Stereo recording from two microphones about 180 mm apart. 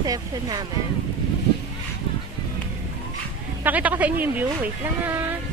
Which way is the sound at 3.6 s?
10° right (ahead or behind).